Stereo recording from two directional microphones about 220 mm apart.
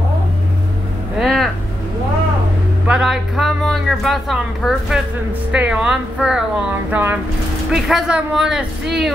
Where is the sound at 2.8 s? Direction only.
5° right (ahead or behind).